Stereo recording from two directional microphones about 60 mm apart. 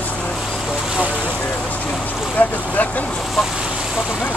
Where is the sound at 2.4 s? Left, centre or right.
Left.